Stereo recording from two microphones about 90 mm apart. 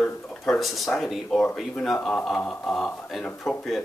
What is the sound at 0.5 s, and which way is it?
Speech, centre (ahead or behind).